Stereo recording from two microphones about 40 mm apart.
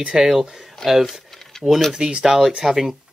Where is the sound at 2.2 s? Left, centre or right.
Centre.